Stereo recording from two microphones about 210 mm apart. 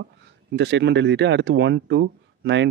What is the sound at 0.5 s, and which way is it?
A man's voice, 55° right (ahead or behind).